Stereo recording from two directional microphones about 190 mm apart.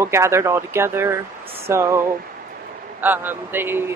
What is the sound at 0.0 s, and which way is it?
Speech, 15° right (ahead or behind).